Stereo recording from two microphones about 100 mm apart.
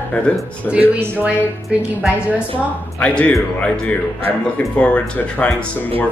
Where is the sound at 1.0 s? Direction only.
15° right (ahead or behind).